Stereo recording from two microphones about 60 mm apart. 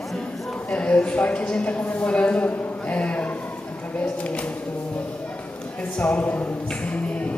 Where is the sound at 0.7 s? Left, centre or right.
Centre.